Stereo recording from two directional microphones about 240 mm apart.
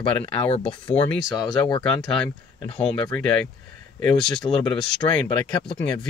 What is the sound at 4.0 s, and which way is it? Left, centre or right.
Speech, centre.